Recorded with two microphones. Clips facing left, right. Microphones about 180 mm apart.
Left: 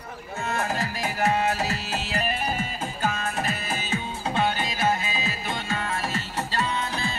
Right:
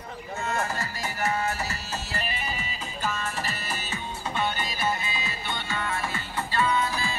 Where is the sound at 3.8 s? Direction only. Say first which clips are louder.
Left 5 dB; 90° left.